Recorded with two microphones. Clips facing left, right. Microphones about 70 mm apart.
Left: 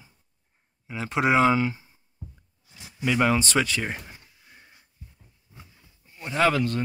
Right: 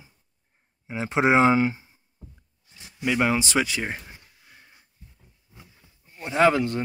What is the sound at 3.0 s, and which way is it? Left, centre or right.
Speech, centre.